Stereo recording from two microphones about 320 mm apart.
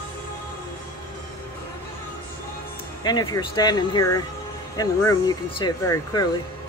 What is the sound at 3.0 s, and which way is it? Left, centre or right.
Speech, centre.